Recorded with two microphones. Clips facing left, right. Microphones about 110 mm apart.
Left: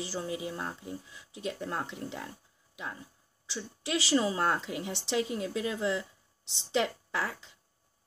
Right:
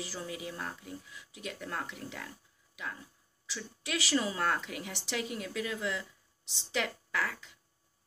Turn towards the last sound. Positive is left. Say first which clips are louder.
# left 1 dB
turn(degrees=25)  # may be behind; listen again after turning